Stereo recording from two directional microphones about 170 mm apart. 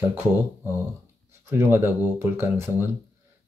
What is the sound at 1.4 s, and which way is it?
Speech, 15° right (ahead or behind).